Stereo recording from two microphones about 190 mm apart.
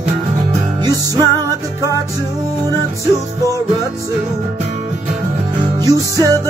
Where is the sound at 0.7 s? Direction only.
20° right (ahead or behind).